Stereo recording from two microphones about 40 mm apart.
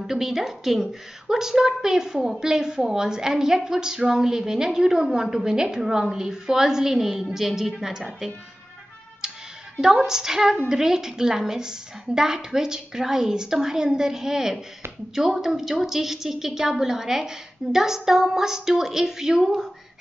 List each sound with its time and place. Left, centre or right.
0.0 s a woman's voice: centre
9.2 s music: centre
9.8 s a woman's voice: centre